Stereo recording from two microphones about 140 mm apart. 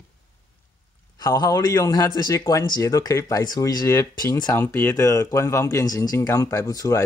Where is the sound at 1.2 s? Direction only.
25° left (ahead or behind).